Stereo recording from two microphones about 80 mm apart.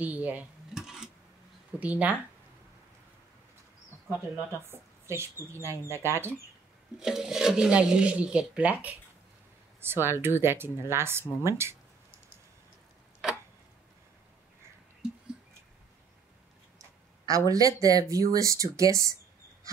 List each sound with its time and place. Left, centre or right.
0.0 s speech: centre
0.7 s a sound: centre
1.8 s speech: centre
4.6 s speech: right
7.0 s speech: centre
9.8 s speech: right
13.2 s tick-tock: centre
17.5 s speech: right